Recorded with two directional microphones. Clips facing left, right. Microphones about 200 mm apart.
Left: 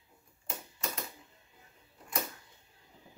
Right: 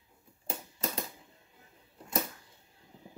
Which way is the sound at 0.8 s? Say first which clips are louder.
Right 3 dB; 30° right (ahead or behind).